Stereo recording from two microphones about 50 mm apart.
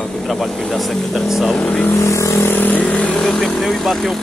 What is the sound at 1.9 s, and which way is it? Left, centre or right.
Vehicle, left.